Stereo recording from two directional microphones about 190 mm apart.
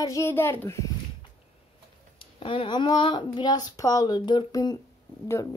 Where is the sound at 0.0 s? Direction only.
15° left (ahead or behind).